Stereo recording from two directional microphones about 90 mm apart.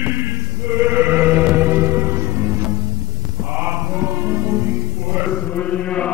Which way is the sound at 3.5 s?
25° right (ahead or behind).